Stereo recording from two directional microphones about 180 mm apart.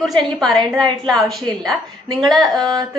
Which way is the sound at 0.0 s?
Centre (ahead or behind).